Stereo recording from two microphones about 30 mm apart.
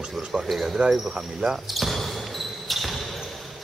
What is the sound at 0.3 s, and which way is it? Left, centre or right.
Speech, right.